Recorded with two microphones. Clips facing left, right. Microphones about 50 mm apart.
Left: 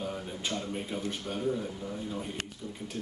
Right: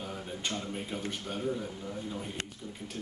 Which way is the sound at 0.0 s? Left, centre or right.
Centre.